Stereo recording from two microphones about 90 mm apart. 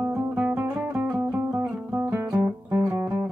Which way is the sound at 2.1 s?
25° right (ahead or behind).